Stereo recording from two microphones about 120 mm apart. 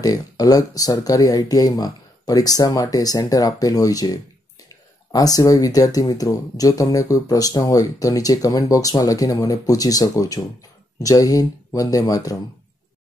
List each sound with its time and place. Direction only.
0.0 s speech: 30° left (ahead or behind)